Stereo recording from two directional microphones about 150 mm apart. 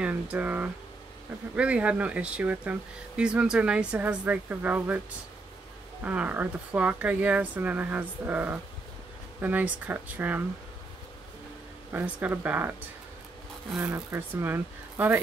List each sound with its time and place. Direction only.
0.0 s speech: 10° right (ahead or behind)
6.0 s speech: 10° right (ahead or behind)
11.9 s speech: 10° right (ahead or behind)
13.7 s speech: 15° right (ahead or behind)